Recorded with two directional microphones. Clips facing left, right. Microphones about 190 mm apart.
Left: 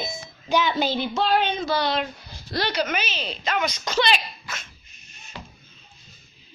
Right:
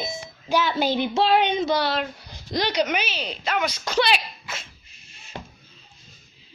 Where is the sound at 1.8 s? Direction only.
5° right (ahead or behind).